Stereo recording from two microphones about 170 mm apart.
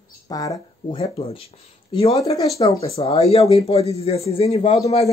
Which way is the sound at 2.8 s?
35° left (ahead or behind).